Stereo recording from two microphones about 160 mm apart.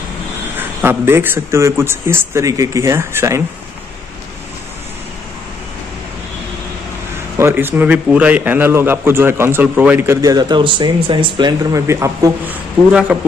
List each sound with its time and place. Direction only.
0.6 s a man's voice: 15° right (ahead or behind)
7.3 s a man's voice: 15° right (ahead or behind)